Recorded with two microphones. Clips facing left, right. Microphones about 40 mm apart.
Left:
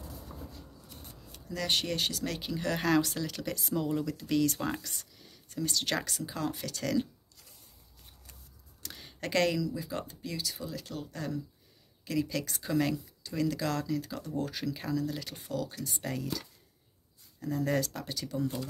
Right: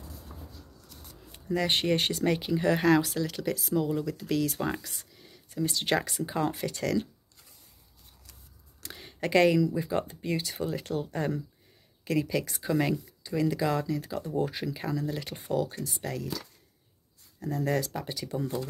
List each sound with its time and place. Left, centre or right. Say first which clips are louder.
1.3 s speech: right 4 dB; right
2.2 s speech: right 8 dB; centre
6.8 s speech: right 1 dB; centre
8.8 s a sound: right 5 dB; centre
9.6 s speech: right 7 dB; right
12.0 s speech: right 4 dB; centre
15.3 s speech: right 6 dB; right
15.8 s speech: right 1 dB; centre
17.4 s speech: right 1 dB; centre